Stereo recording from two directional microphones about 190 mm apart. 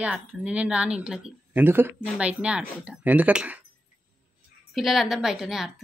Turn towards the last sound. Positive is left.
turn(degrees=0)  # may be behind; listen again after turning